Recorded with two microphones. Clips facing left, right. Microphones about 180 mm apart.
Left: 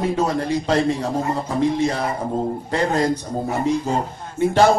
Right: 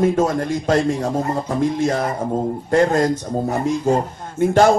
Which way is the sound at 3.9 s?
45° right (ahead or behind).